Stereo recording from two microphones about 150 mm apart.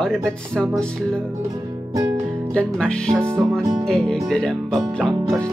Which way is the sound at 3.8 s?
5° left (ahead or behind).